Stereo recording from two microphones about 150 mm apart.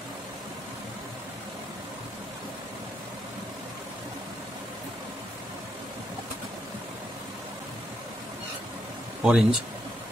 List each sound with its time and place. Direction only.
9.2 s speech: 5° right (ahead or behind)